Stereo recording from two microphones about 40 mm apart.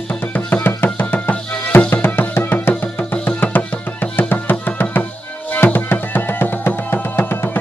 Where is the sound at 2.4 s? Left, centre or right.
Left.